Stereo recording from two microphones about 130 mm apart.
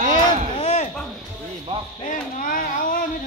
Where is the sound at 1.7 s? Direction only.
50° right (ahead or behind).